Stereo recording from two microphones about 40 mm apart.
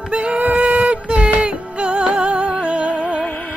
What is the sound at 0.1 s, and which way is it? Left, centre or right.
Female singing, right.